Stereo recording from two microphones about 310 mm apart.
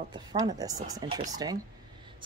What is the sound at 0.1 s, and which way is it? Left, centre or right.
A woman's voice, centre.